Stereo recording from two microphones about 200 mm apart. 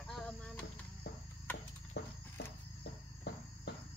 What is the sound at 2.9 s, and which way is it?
Cricket, 60° left (ahead or behind).